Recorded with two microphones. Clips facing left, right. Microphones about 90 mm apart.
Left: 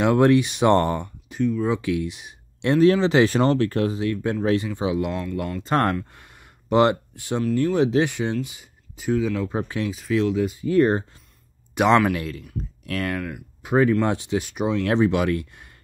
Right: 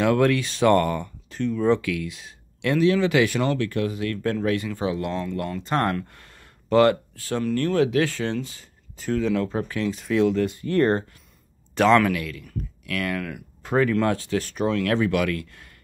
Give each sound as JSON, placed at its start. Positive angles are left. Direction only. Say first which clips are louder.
{"t": 0.0, "sound": "speech", "louder": "left 3 dB", "side_deg": 20}
{"t": 1.3, "sound": "speech", "louder": "right 1 dB", "side_deg": 5}
{"t": 1.8, "sound": "speech", "louder": "left 3 dB", "side_deg": 25}
{"t": 4.0, "sound": "speech", "louder": "left 1 dB", "side_deg": 20}
{"t": 5.7, "sound": "speech", "louder": "left 3 dB", "side_deg": 20}
{"t": 9.5, "sound": "speech", "louder": "left 1 dB", "side_deg": 20}
{"t": 9.8, "sound": "speech", "louder": "right 3 dB", "side_deg": 0}
{"t": 12.1, "sound": "speech", "louder": "left 1 dB", "side_deg": 30}
{"t": 13.2, "sound": "speech", "louder": "left 1 dB", "side_deg": 5}
{"t": 14.0, "sound": "speech", "louder": "even", "side_deg": 20}
{"t": 14.8, "sound": "speech", "louder": "left 4 dB", "side_deg": 25}